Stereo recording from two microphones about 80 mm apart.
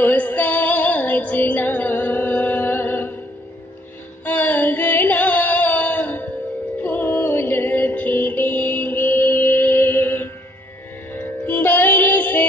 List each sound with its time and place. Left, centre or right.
0.0 s music: left
4.2 s music: left